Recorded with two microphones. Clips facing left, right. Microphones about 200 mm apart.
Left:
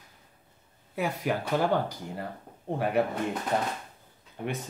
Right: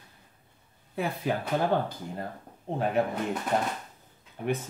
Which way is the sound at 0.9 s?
10° left (ahead or behind).